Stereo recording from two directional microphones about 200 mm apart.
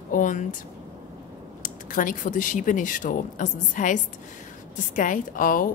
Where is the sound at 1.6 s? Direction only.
40° left (ahead or behind).